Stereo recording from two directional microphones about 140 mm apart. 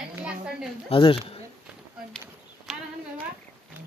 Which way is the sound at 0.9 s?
40° left (ahead or behind).